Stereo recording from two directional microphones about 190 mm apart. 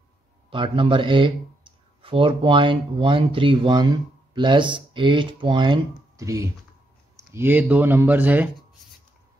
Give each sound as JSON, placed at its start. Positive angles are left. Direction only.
{"t": 0.5, "sound": "speech", "side_deg": -25}